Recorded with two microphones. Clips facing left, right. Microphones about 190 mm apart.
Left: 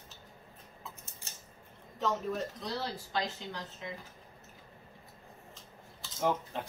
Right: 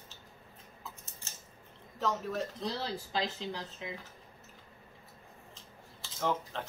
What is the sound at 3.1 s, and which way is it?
Speech, 30° right (ahead or behind).